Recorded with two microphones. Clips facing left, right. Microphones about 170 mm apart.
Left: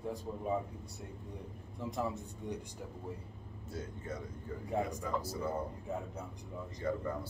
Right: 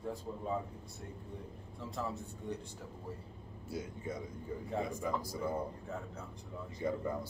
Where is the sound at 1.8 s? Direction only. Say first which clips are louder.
Left 3 dB; 15° left (ahead or behind).